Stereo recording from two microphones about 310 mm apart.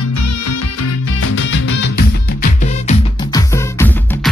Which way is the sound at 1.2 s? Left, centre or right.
Left.